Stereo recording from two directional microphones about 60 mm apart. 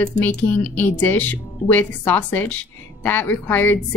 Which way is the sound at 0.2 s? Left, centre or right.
Left.